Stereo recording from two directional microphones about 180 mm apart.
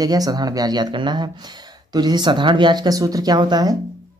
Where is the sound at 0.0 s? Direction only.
20° right (ahead or behind).